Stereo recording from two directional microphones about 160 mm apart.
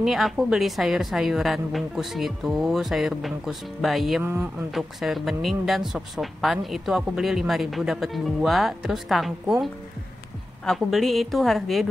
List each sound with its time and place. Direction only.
0.0 s speech: centre (ahead or behind)
4.2 s speech: 10° right (ahead or behind)
4.6 s speech: centre (ahead or behind)